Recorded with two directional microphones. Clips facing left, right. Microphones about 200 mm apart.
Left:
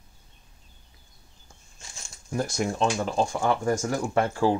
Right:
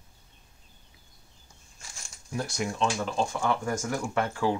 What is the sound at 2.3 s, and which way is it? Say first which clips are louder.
Speech: left 4 dB; 45° left (ahead or behind).